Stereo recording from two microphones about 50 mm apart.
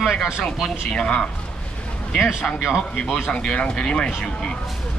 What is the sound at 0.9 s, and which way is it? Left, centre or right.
Speech, centre.